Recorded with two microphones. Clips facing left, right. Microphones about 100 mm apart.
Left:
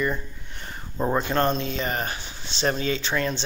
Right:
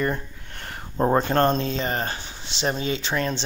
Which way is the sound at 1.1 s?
40° right (ahead or behind).